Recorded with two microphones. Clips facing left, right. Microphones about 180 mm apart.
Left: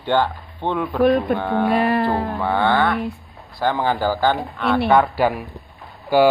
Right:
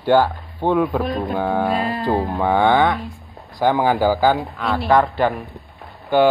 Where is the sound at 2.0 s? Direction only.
15° right (ahead or behind).